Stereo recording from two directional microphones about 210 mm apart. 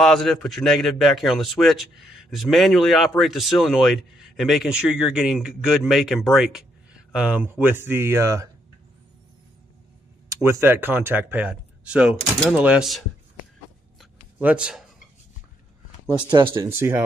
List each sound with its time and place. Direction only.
0.0 s a man's voice: centre (ahead or behind)
10.3 s speech: 15° right (ahead or behind)
14.4 s a man's voice: 5° right (ahead or behind)
16.3 s speech: 25° right (ahead or behind)
16.6 s speech: 10° right (ahead or behind)